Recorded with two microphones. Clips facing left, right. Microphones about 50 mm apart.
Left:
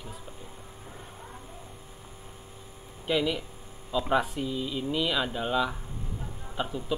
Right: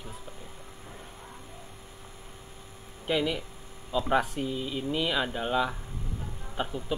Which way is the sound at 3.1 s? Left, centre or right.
Centre.